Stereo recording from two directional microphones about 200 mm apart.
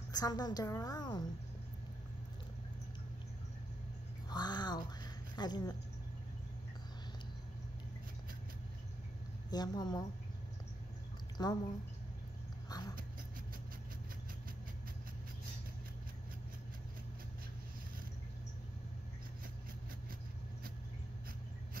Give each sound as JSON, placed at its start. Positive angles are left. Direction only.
{"t": 0.1, "sound": "a woman's voice", "side_deg": 20}
{"t": 4.3, "sound": "a sound", "side_deg": 20}
{"t": 5.3, "sound": "speech", "side_deg": 20}
{"t": 9.5, "sound": "a woman's voice", "side_deg": 20}
{"t": 11.3, "sound": "a woman's voice", "side_deg": 20}
{"t": 12.6, "sound": "dog", "side_deg": 20}